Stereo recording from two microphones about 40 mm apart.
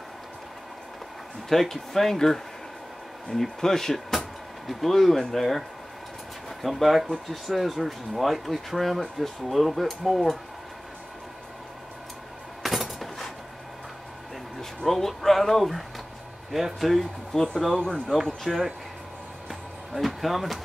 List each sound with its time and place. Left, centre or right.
1.5 s speech: centre
6.6 s speech: centre
12.6 s a sound: centre
14.9 s speech: centre
17.7 s speech: left
18.0 s speech: centre
19.9 s speech: centre